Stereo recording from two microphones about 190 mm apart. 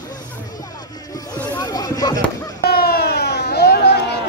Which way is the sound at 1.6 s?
20° left (ahead or behind).